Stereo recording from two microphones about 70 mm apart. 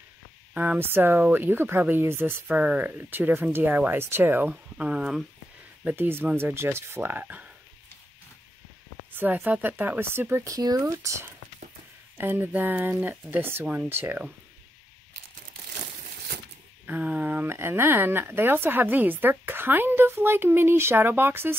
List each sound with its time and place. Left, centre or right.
0.6 s speech: right
4.5 s speech: centre
5.9 s speech: right
9.1 s speech: right
10.4 s speech: right
10.8 s speech: right
12.2 s speech: right
16.8 s speech: right